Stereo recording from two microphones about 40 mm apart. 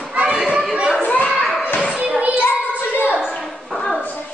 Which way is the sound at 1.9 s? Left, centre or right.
Right.